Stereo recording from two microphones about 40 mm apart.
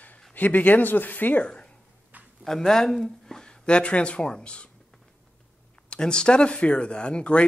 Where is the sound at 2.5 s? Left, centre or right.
Centre.